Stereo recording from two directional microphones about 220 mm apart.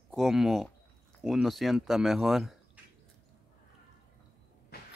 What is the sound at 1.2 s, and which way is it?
Speech, centre (ahead or behind).